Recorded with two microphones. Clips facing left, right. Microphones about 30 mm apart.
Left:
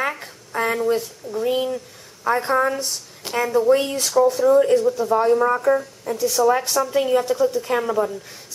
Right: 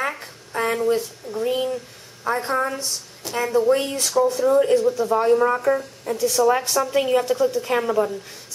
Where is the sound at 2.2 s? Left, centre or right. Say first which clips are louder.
Left 3 dB; centre.